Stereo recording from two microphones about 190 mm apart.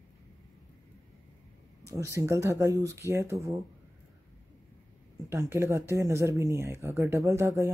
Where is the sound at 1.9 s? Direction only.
15° right (ahead or behind).